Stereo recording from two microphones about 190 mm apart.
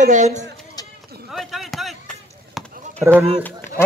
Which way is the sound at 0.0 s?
40° right (ahead or behind).